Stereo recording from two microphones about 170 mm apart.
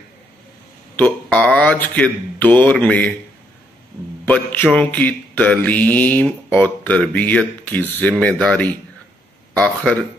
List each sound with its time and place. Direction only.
0.9 s mantra: 10° left (ahead or behind)
4.3 s mantra: 10° left (ahead or behind)